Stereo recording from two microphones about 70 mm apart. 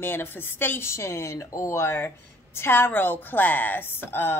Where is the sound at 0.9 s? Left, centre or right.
Left.